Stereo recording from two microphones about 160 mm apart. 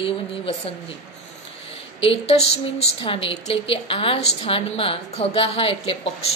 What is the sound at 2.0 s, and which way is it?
A woman's voice, 35° left (ahead or behind).